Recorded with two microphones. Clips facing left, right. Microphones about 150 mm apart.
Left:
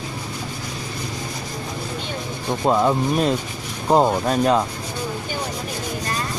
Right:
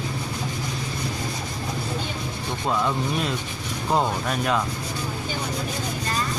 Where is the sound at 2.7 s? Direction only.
40° left (ahead or behind).